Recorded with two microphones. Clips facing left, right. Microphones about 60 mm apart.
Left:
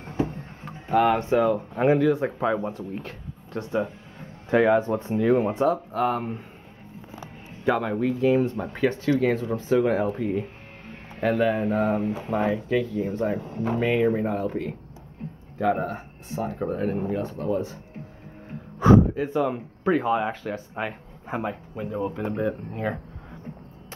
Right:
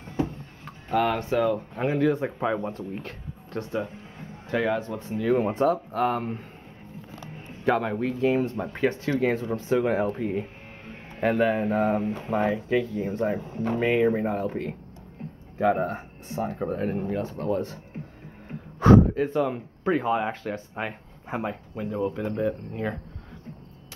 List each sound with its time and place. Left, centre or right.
0.7 s a sound: centre
1.2 s speech: left
2.1 s speech: centre
4.5 s speech: centre
4.8 s speech: left
5.3 s speech: centre
7.1 s music: centre
7.7 s speech: centre
13.4 s speech: centre
13.7 s speech: centre
18.8 s speech: centre